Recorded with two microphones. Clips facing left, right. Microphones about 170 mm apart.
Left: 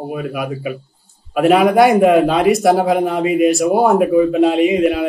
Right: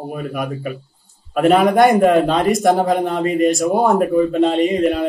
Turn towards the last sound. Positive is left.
turn(degrees=5)  # may be behind; listen again after turning